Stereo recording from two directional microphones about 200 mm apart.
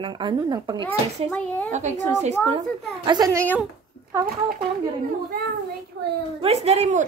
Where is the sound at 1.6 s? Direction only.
35° right (ahead or behind).